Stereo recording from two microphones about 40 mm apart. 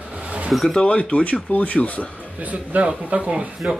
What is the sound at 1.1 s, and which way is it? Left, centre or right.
Speech, left.